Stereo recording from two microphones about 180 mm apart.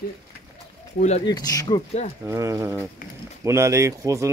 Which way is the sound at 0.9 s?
40° left (ahead or behind).